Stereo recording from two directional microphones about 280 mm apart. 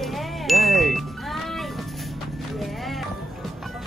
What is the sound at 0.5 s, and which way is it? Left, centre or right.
Music, centre.